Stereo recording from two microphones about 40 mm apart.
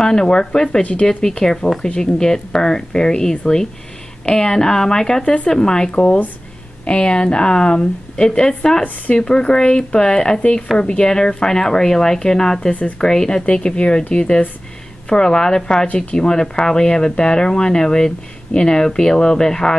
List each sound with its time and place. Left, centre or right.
0.0 s speech: centre
13.5 s speech: left